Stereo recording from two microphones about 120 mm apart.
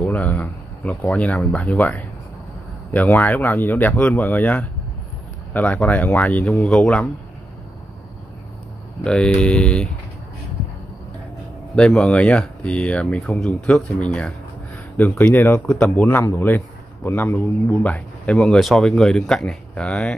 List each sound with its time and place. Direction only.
0.0 s a man's voice: 15° left (ahead or behind)
3.2 s a man's voice: 15° left (ahead or behind)
9.0 s a man's voice: 5° left (ahead or behind)
11.7 s a man's voice: 5° left (ahead or behind)